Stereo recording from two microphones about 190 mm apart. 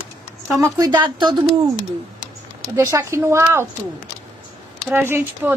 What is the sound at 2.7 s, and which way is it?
Speech, 15° right (ahead or behind).